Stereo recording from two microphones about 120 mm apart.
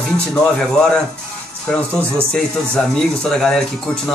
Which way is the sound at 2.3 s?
5° left (ahead or behind).